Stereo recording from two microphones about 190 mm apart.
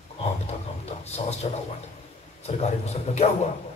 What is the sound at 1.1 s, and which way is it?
Speech, 35° left (ahead or behind).